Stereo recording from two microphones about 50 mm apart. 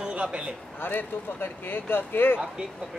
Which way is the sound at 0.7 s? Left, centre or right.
Left.